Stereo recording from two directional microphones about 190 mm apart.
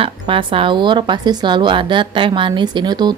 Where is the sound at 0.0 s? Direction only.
25° right (ahead or behind).